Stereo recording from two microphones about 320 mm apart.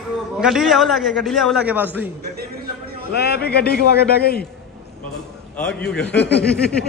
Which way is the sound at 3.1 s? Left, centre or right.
Left.